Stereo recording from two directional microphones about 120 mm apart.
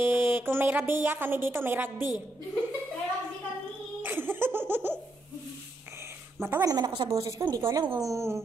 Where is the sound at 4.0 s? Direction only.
15° right (ahead or behind).